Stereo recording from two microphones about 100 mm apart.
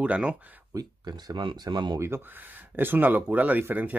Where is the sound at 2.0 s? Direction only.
25° right (ahead or behind).